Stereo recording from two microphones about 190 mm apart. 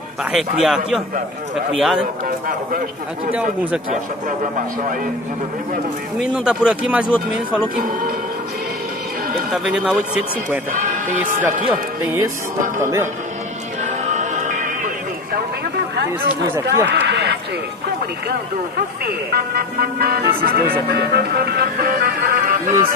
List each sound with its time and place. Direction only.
0.2 s speech: 5° right (ahead or behind)
2.2 s speech: 45° right (ahead or behind)
6.3 s speech: 5° right (ahead or behind)
7.7 s speech: 45° right (ahead or behind)
9.5 s speech: 5° right (ahead or behind)
10.7 s speech: 45° right (ahead or behind)
12.6 s speech: 40° right (ahead or behind)
14.0 s music: 40° right (ahead or behind)
16.6 s a man's voice: 65° right (ahead or behind)
19.0 s speech: 55° right (ahead or behind)